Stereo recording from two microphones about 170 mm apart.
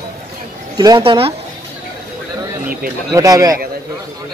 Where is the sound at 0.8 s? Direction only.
25° right (ahead or behind).